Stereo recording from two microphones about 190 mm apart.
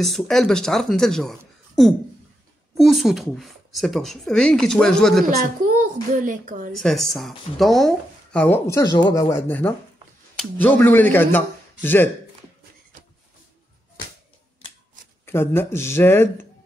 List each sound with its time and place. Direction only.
0.0 s speech: centre (ahead or behind)
5.8 s speech: 45° right (ahead or behind)
6.7 s speech: centre (ahead or behind)
15.2 s speech: 10° left (ahead or behind)